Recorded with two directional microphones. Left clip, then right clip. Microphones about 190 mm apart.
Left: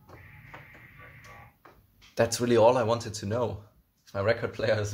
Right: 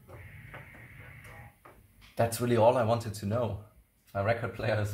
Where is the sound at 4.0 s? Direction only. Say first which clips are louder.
Left 3 dB; 50° left (ahead or behind).